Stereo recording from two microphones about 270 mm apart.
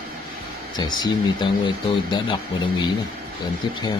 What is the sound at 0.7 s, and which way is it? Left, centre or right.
Speech, centre.